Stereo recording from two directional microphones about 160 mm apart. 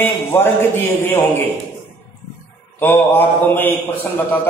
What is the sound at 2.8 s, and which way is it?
Mantra, 15° left (ahead or behind).